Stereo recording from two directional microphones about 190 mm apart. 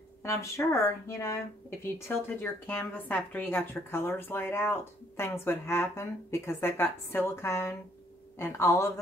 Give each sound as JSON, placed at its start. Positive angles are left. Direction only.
{"t": 0.2, "sound": "a woman's voice", "side_deg": 15}